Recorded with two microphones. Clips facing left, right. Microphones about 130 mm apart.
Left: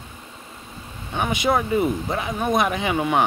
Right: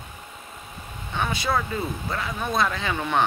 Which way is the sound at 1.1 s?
20° left (ahead or behind).